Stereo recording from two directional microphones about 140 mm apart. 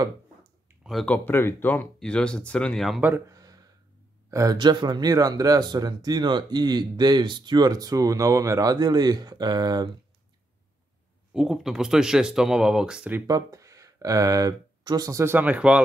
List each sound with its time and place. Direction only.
0.0 s a sound: 25° right (ahead or behind)
0.8 s speech: 5° left (ahead or behind)
3.0 s speech: 15° right (ahead or behind)
3.3 s a sound: 25° right (ahead or behind)
4.3 s speech: 25° right (ahead or behind)
11.3 s speech: 5° right (ahead or behind)
13.3 s speech: 25° right (ahead or behind)